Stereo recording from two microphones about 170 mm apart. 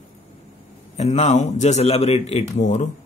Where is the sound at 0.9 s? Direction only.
40° left (ahead or behind).